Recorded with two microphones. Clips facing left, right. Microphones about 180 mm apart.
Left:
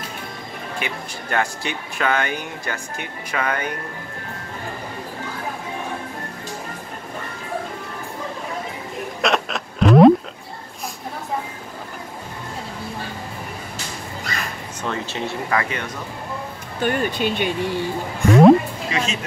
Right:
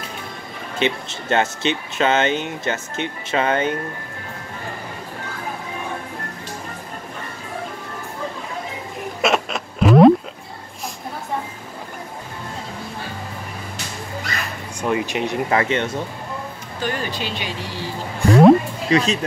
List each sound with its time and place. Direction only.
0.7 s speech: 25° right (ahead or behind)
9.2 s a sound: centre (ahead or behind)
14.8 s speech: 15° right (ahead or behind)
16.8 s speech: 55° left (ahead or behind)
18.2 s music: 30° right (ahead or behind)
18.9 s speech: 35° right (ahead or behind)